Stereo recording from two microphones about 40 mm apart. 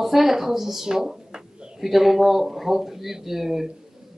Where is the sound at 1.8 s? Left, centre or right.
Centre.